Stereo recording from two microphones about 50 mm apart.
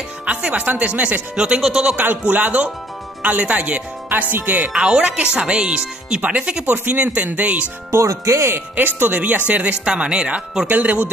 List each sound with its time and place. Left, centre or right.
0.3 s speech: right
2.2 s speech: right
4.1 s speech: right
4.7 s speech: right
7.9 s speech: right
8.5 s speech: right